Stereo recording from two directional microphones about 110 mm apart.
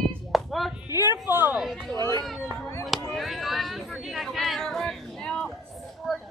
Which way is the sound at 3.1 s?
Centre (ahead or behind).